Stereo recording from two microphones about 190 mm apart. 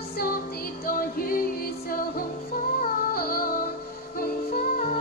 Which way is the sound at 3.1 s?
50° left (ahead or behind).